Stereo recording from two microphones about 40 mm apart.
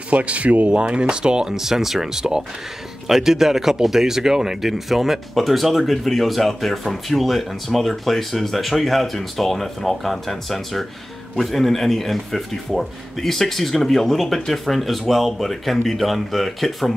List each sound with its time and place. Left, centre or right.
0.1 s speech: right; by 16.9 s centre